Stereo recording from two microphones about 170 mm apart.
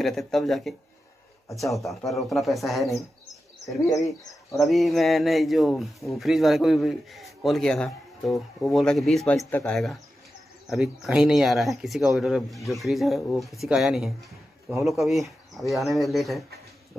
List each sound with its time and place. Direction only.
0.0 s speech: centre (ahead or behind)
3.9 s speech: 20° left (ahead or behind)
4.6 s speech: centre (ahead or behind)
9.4 s speech: 15° left (ahead or behind)
9.7 s speech: centre (ahead or behind)